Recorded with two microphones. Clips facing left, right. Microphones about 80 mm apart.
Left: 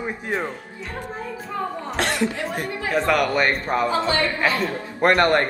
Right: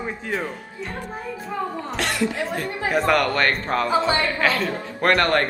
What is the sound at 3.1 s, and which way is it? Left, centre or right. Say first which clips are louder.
Speech: left 1 dB; centre.